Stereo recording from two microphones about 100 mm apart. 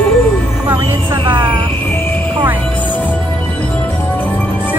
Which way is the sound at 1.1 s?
55° right (ahead or behind).